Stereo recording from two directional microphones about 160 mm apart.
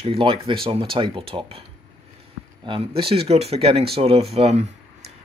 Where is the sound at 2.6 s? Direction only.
35° right (ahead or behind).